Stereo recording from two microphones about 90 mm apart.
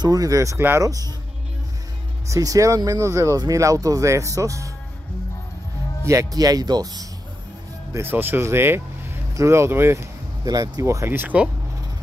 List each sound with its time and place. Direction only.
0.0 s speech: 40° right (ahead or behind)
2.2 s speech: 40° right (ahead or behind)
6.0 s speech: 40° right (ahead or behind)
7.9 s speech: 25° right (ahead or behind)
10.4 s speech: 45° right (ahead or behind)
11.1 s speech: 25° right (ahead or behind)